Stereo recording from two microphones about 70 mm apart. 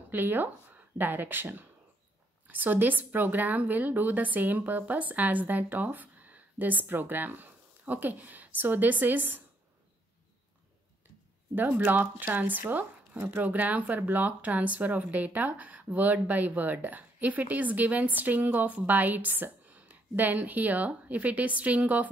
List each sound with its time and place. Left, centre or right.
0.1 s speech: right
11.5 s speech: right